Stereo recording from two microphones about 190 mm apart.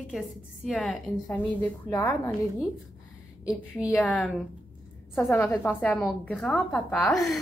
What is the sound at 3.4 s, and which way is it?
A woman's voice, 5° right (ahead or behind).